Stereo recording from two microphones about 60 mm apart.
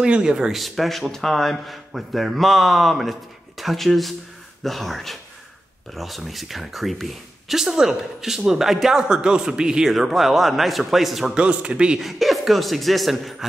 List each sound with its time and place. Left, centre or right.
0.0 s speech: centre
11.3 s speech: centre
12.0 s speech: centre